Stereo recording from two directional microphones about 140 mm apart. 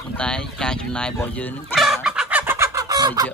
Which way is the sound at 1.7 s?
Centre (ahead or behind).